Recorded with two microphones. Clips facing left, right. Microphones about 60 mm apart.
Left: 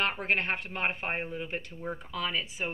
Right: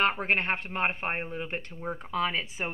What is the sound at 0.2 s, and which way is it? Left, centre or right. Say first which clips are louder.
A woman's voice: right 2 dB; right.